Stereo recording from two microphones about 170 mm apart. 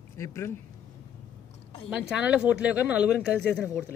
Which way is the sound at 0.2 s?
15° left (ahead or behind).